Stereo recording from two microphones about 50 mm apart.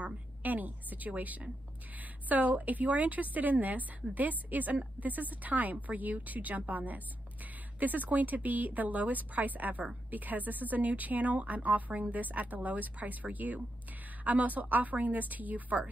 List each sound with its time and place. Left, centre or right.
0.0 s a woman's voice: right